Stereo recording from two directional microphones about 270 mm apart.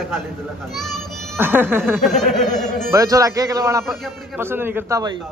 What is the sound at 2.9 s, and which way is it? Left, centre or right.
A man's voice, centre.